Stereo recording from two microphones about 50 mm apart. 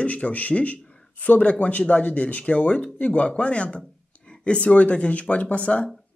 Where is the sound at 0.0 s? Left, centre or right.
Left.